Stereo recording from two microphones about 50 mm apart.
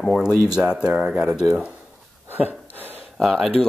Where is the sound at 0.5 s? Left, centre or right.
Centre.